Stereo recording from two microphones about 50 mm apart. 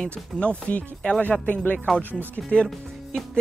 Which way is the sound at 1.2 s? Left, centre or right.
Left.